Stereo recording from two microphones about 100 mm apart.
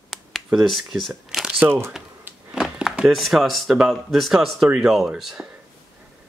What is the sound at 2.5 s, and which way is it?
Speech, 5° right (ahead or behind).